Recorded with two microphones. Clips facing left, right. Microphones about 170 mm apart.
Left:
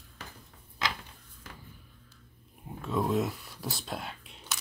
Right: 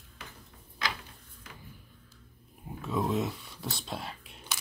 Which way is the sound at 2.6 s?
Centre (ahead or behind).